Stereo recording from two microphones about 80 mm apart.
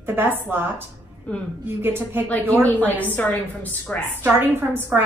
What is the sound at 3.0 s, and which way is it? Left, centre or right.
Speech, left.